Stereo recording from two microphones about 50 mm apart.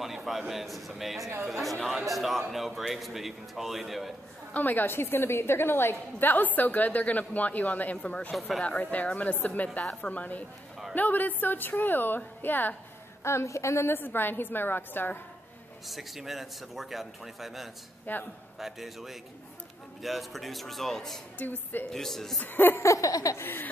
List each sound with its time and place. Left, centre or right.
0.0 s a man's voice: centre
4.6 s a woman's voice: left
13.2 s a woman's voice: left
13.9 s a woman's voice: left
15.9 s a man's voice: centre
18.1 s a woman's voice: left
18.6 s a man's voice: centre
21.4 s a woman's voice: left
21.8 s speech: centre
22.4 s a woman's voice: left
22.8 s laughter: left
23.4 s a woman's voice: left